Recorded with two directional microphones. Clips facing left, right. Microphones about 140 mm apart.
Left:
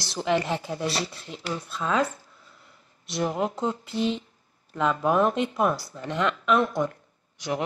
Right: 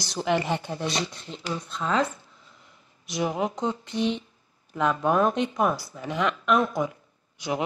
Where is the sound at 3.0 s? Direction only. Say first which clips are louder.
Even; centre (ahead or behind).